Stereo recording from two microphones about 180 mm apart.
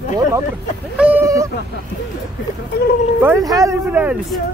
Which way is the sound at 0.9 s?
5° right (ahead or behind).